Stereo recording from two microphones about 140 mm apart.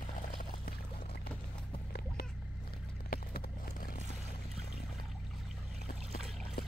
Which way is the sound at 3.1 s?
90° left.